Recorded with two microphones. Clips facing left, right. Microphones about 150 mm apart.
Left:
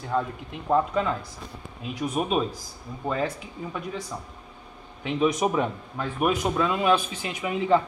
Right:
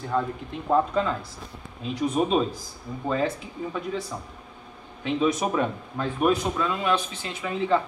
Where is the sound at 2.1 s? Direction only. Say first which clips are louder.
Right 2 dB; 10° left (ahead or behind).